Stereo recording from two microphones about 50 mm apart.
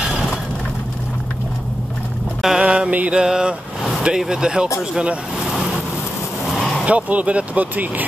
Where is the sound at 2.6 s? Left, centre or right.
Right.